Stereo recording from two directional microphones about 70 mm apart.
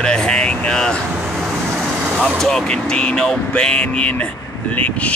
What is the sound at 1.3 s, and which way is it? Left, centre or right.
Vehicle, centre.